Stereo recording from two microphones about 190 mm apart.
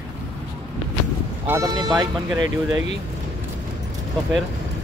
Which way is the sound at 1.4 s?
15° right (ahead or behind).